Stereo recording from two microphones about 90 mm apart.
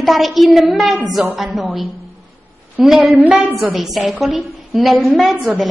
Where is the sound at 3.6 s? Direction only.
Centre (ahead or behind).